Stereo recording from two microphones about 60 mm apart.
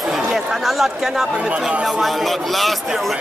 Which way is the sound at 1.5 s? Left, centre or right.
Right.